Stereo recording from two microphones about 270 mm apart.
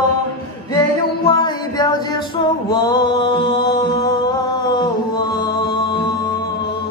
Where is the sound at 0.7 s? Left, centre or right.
Centre.